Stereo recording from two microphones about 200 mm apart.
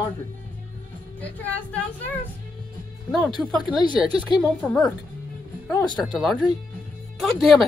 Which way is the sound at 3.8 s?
20° left (ahead or behind).